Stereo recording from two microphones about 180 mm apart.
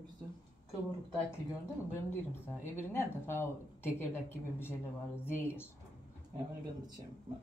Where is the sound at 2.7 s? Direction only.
10° left (ahead or behind).